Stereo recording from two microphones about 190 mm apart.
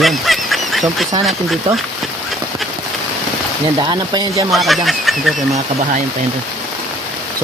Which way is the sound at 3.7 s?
25° right (ahead or behind).